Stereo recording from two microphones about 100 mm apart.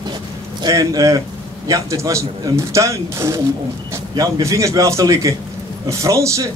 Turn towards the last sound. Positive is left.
turn(degrees=-30)  # may be behind; listen again after turning